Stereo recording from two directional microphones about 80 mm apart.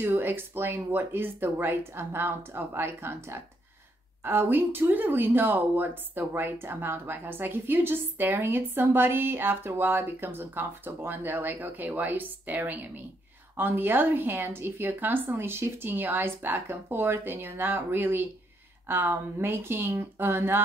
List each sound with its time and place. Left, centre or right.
0.0 s speech: right